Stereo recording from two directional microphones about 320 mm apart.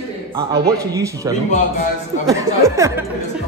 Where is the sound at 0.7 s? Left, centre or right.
Centre.